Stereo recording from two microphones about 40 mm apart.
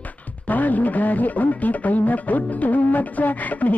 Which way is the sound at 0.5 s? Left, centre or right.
Left.